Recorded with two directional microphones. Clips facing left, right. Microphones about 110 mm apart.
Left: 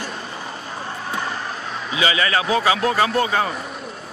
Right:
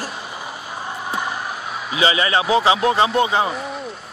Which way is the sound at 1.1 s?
15° right (ahead or behind).